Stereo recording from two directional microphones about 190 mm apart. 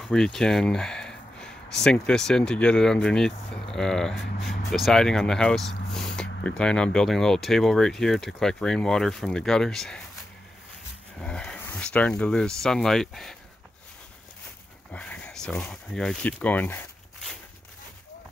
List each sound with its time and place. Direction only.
0.0 s speech: centre (ahead or behind)
11.1 s speech: 5° left (ahead or behind)
14.9 s speech: 5° left (ahead or behind)